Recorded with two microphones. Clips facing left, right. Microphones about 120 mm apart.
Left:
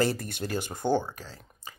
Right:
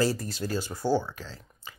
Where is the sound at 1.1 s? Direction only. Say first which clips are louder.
Right 1 dB; 45° left (ahead or behind).